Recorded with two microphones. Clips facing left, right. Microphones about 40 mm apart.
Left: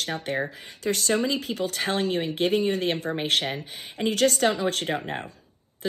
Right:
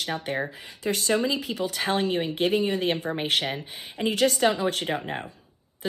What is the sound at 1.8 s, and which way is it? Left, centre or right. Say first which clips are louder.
Speech: right 1 dB; right.